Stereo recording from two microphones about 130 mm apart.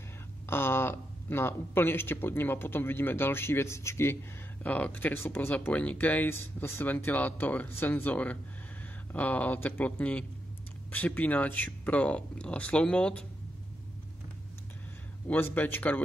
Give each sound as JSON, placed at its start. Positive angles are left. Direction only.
{"t": 0.5, "sound": "speech", "side_deg": 15}
{"t": 15.2, "sound": "speech", "side_deg": 15}